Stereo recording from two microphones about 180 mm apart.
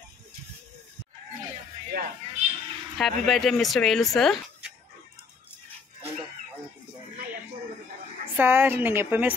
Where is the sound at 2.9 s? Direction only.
Centre (ahead or behind).